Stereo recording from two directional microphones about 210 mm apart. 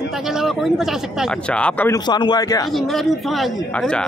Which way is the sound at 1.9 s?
20° left (ahead or behind).